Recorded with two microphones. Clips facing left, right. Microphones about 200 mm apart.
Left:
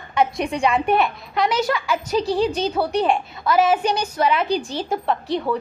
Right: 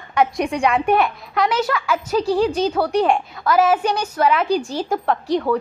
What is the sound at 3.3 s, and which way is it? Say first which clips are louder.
Speech: right 1 dB; 5° left (ahead or behind).